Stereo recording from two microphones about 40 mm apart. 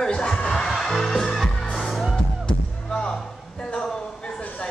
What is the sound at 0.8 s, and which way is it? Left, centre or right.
Music, centre.